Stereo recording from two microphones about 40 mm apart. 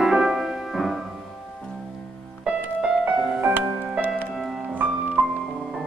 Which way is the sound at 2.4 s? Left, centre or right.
Right.